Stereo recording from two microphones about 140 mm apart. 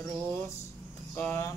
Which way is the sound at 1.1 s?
15° left (ahead or behind).